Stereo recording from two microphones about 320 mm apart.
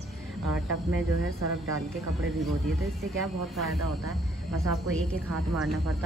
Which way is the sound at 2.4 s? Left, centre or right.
Centre.